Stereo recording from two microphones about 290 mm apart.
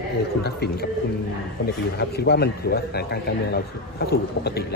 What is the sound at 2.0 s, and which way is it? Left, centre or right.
A man's voice, left.